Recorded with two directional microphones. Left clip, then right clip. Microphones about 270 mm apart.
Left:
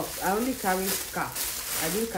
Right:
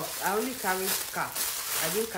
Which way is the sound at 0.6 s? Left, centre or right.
Centre.